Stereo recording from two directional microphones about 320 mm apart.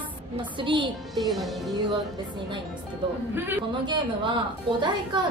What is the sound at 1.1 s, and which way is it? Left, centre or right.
Speech, centre.